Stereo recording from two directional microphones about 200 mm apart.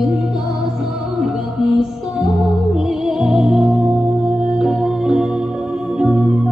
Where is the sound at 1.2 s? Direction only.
Centre (ahead or behind).